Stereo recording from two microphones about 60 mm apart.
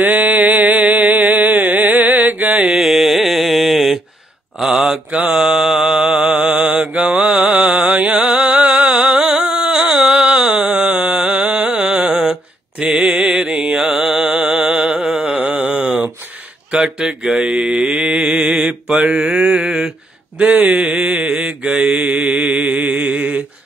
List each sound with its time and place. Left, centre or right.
0.0 s a sound: right
2.7 s mantra: centre
5.1 s mantra: right
5.4 s mantra: centre; by 8.2 s right
8.2 s a sound: centre
11.3 s music: centre
12.9 s mantra: centre
13.4 s music: right
16.7 s mantra: centre